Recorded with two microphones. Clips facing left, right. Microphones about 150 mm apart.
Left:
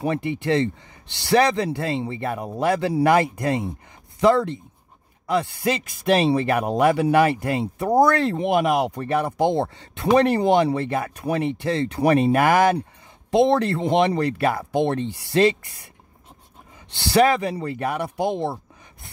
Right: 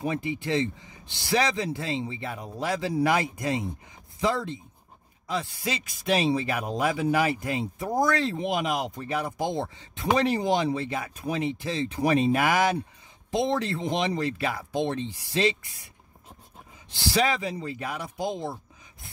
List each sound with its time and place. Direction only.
0.0 s speech: 65° left (ahead or behind)
16.9 s speech: 65° left (ahead or behind)